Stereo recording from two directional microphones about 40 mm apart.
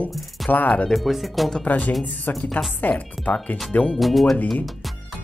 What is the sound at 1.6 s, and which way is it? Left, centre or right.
Speech, left.